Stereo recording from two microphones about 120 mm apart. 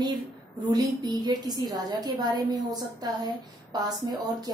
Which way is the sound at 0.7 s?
35° right (ahead or behind).